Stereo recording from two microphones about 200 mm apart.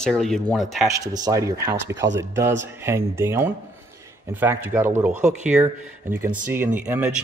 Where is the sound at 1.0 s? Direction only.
20° right (ahead or behind).